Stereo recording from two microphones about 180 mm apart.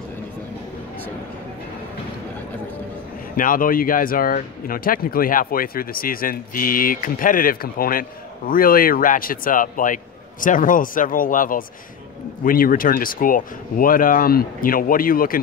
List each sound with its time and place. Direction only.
3.3 s speech: 50° left (ahead or behind)